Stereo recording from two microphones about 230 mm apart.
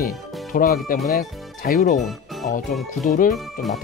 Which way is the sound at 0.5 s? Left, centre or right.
Left.